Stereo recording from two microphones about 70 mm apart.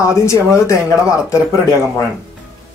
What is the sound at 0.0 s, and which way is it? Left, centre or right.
A man's voice, left.